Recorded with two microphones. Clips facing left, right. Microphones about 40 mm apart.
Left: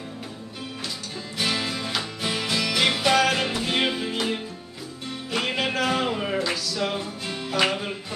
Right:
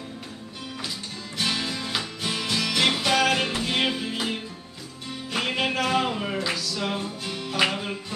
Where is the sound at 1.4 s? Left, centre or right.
Centre.